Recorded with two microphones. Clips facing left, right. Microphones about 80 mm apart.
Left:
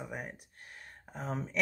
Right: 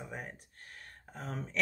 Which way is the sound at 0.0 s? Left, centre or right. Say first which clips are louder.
Left 2 dB; centre.